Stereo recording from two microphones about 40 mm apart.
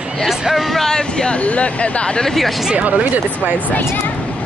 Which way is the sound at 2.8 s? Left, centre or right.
Right.